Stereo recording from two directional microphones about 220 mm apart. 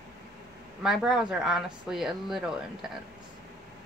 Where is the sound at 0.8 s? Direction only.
Centre (ahead or behind).